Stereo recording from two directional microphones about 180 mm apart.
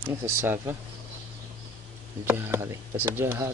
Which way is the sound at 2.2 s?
15° right (ahead or behind).